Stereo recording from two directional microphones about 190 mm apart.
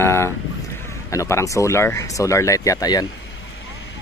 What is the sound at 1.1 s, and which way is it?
Speech, 15° left (ahead or behind).